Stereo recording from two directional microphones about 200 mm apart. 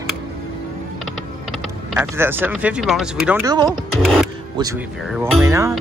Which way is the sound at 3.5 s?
20° right (ahead or behind).